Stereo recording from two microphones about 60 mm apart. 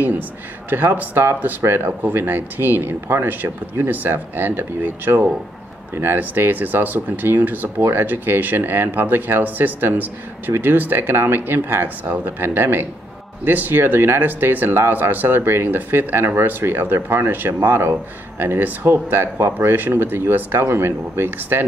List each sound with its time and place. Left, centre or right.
0.7 s speech: right
3.9 s speech: right
19.7 s speech: right